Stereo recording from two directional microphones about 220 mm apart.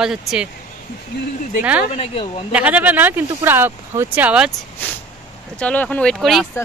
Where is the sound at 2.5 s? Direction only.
5° right (ahead or behind).